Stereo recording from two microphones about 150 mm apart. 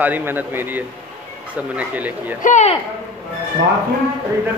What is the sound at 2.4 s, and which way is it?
Speech, 55° left (ahead or behind).